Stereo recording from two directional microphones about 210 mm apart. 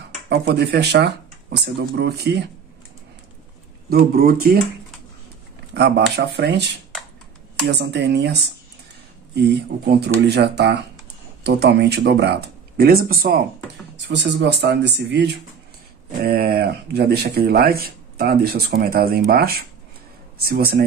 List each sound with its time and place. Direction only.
0.3 s speech: 50° right (ahead or behind)
3.9 s speech: 45° right (ahead or behind)
5.8 s speech: 55° right (ahead or behind)
7.7 s speech: 55° right (ahead or behind)